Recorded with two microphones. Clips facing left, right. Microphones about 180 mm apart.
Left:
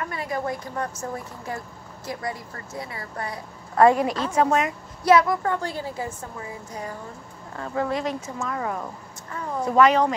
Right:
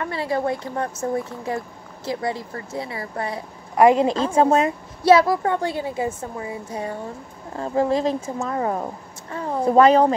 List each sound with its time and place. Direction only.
0.0 s a woman's voice: 30° right (ahead or behind)